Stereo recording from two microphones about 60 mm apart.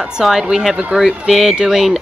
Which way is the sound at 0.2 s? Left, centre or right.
Centre.